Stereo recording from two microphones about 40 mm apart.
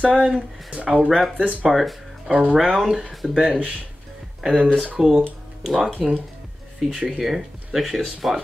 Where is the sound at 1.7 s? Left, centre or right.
Centre.